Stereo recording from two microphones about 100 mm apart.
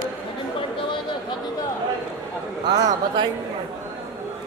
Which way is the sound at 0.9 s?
50° left (ahead or behind).